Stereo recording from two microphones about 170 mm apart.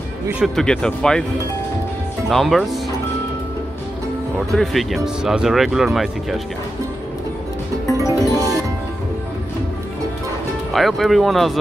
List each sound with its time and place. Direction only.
0.3 s speech: centre (ahead or behind)
2.2 s speech: centre (ahead or behind)
4.5 s speech: centre (ahead or behind)
8.1 s music: 20° left (ahead or behind)
8.4 s music: 20° right (ahead or behind)
10.7 s speech: centre (ahead or behind)